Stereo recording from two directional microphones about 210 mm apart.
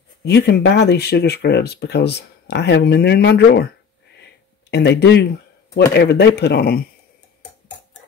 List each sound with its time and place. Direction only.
0.2 s speech: 50° left (ahead or behind)
4.2 s a sound: 55° left (ahead or behind)
5.9 s speech: 55° left (ahead or behind)